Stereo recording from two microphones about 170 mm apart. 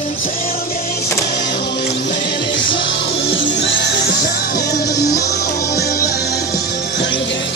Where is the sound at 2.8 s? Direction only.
90° left; by 5.0 s 70° left (ahead or behind).